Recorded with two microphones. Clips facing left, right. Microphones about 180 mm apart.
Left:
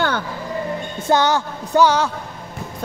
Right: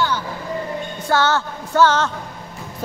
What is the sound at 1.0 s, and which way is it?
Speech, 15° left (ahead or behind).